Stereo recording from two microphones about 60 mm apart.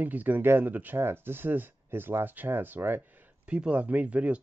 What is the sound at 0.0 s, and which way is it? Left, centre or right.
Speech, right.